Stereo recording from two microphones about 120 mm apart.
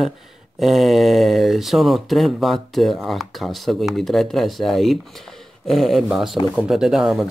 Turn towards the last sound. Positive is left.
turn(degrees=0)  # may be behind; listen again after turning